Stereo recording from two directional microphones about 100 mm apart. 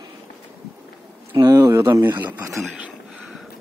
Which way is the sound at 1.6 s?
25° right (ahead or behind).